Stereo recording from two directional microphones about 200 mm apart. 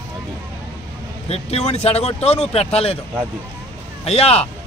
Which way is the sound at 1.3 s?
30° left (ahead or behind).